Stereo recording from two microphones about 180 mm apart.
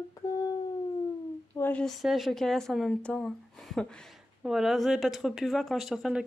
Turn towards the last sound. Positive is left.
turn(degrees=0)  # may be behind; listen again after turning